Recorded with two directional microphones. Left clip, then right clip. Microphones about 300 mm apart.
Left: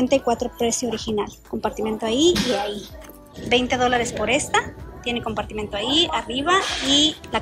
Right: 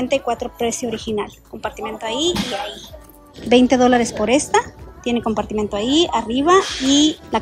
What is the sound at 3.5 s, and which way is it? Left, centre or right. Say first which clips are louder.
A woman's voice: right 6 dB; centre.